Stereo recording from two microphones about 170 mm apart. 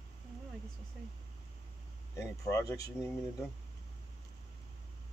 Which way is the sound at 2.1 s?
20° left (ahead or behind).